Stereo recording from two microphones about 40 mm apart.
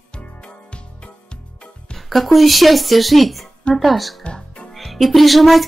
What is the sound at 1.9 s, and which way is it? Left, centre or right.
Speech, centre.